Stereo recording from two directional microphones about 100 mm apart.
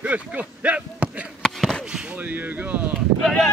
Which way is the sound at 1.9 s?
15° right (ahead or behind).